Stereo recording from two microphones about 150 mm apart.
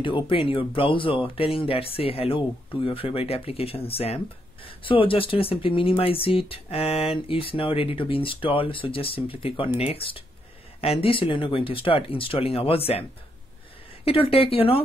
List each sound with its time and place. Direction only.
0.0 s speech: 35° left (ahead or behind)
14.0 s speech: 40° left (ahead or behind)